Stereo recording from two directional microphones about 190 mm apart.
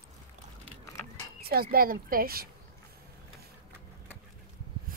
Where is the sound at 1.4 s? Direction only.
55° right (ahead or behind).